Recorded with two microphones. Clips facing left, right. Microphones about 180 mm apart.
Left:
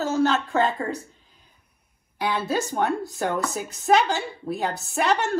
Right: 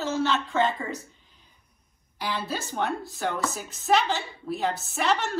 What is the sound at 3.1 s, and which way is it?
Speech, 45° left (ahead or behind).